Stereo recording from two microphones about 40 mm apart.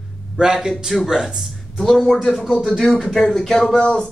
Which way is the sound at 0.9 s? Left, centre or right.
Centre.